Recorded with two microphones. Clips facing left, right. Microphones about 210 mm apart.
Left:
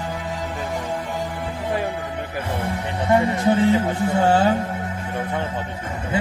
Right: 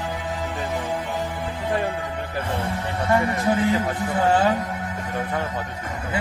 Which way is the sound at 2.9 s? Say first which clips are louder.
Left 3 dB; 20° left (ahead or behind).